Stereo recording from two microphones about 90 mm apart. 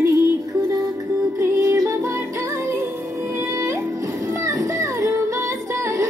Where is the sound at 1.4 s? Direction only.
35° right (ahead or behind).